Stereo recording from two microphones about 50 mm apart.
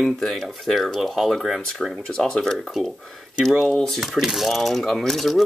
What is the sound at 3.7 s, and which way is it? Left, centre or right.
Speech, centre.